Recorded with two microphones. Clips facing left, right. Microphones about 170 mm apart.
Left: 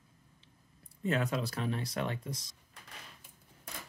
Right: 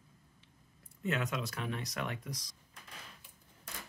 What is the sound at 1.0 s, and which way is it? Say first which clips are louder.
Speech: left 3 dB; 35° left (ahead or behind).